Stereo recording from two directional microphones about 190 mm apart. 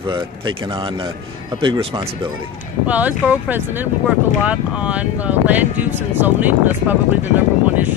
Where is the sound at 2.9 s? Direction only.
10° right (ahead or behind).